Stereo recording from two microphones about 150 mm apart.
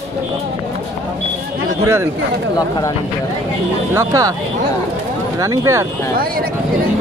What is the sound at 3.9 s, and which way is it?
Speech, 25° right (ahead or behind).